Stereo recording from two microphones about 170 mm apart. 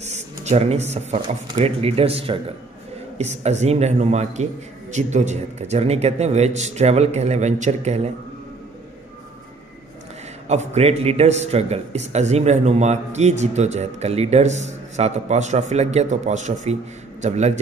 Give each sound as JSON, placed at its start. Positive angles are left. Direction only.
{"t": 0.0, "sound": "a sound", "side_deg": -40}
{"t": 1.5, "sound": "a man's voice", "side_deg": -35}
{"t": 10.5, "sound": "a man's voice", "side_deg": -40}